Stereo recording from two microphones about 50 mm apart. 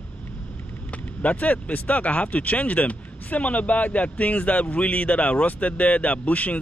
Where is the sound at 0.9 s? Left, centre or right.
Left.